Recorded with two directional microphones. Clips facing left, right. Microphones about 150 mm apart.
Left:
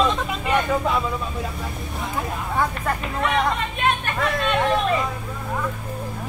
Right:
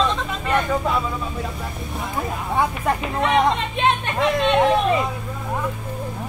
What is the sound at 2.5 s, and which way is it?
Speech, 20° right (ahead or behind).